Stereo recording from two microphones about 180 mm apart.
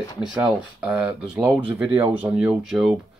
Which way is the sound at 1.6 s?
30° right (ahead or behind).